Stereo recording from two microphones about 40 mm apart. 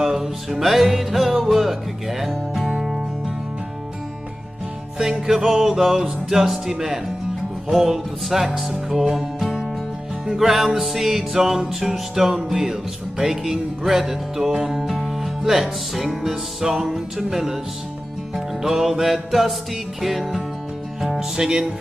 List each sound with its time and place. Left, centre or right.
0.0 s music: centre
4.9 s music: centre
21.2 s music: centre